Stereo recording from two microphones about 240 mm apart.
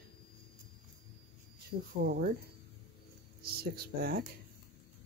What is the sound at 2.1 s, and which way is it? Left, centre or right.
Speech, right.